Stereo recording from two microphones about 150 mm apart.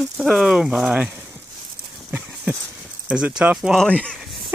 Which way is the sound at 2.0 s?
10° right (ahead or behind).